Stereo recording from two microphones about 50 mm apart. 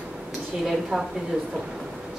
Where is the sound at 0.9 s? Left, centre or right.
Centre.